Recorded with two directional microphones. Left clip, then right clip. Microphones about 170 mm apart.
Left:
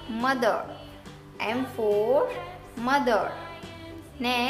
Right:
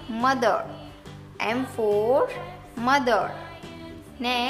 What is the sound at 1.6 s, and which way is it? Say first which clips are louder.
Speech: right 1 dB; centre (ahead or behind).